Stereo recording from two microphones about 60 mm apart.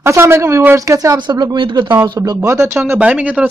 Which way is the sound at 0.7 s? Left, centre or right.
Right.